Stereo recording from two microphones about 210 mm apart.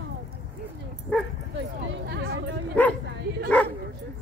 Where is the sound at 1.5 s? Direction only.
55° right (ahead or behind).